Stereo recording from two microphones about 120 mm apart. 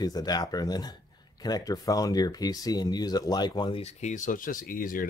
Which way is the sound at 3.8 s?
85° left.